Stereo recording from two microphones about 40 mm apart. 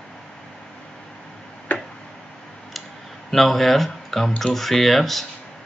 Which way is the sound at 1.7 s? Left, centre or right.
Left.